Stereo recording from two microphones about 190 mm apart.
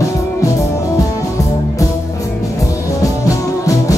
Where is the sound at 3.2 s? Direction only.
20° left (ahead or behind).